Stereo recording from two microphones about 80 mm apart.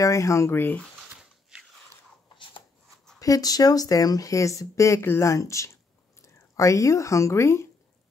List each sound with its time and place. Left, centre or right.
0.0 s speech: left
3.2 s speech: left